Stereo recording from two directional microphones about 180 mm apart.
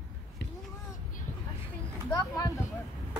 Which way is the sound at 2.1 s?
20° left (ahead or behind).